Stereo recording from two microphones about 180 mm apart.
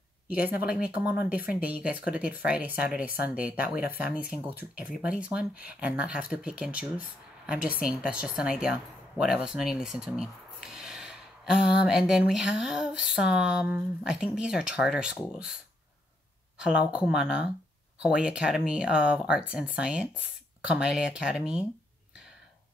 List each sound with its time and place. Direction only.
0.3 s speech: 10° right (ahead or behind)
5.0 s speech: 5° right (ahead or behind)